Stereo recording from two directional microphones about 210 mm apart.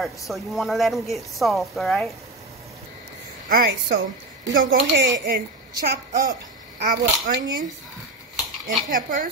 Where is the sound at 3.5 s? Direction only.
50° right (ahead or behind).